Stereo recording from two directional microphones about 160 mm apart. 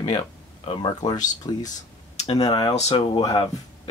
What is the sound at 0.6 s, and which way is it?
Speech, 25° left (ahead or behind).